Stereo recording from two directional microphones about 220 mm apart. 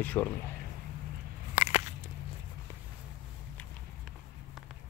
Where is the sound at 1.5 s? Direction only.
30° left (ahead or behind).